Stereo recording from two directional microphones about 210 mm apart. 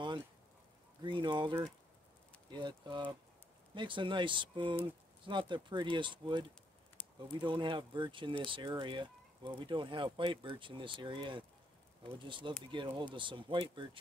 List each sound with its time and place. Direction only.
1.0 s speech: 20° right (ahead or behind)
2.5 s speech: 20° right (ahead or behind)